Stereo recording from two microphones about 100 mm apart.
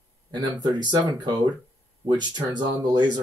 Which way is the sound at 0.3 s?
45° right (ahead or behind).